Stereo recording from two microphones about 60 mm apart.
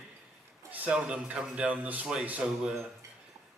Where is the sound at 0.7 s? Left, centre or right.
Right.